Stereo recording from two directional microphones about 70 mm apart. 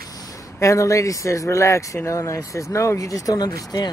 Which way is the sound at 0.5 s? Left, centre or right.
Left.